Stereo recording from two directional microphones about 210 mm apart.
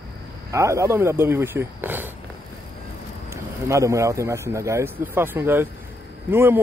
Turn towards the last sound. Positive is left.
turn(degrees=-10)  # may be behind; listen again after turning